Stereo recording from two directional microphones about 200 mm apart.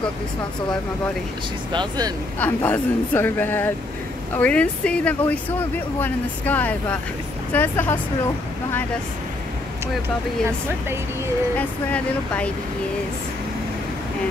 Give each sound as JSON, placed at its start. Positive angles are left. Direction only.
{"t": 1.7, "sound": "speech", "side_deg": -20}
{"t": 2.3, "sound": "speech", "side_deg": 10}
{"t": 11.5, "sound": "speech", "side_deg": 5}